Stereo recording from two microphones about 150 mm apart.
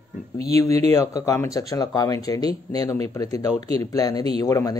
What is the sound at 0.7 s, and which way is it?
Speech, 45° right (ahead or behind).